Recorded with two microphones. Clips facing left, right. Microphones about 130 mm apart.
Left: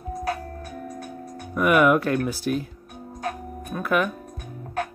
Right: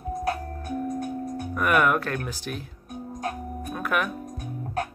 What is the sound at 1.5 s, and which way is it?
Speech, 10° left (ahead or behind).